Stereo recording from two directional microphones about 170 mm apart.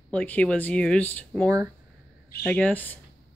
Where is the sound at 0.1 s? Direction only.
10° left (ahead or behind).